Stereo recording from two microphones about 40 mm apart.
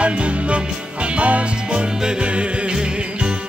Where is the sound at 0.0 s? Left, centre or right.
Right.